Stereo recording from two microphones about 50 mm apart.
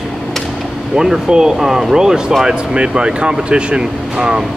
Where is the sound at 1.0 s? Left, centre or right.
Centre.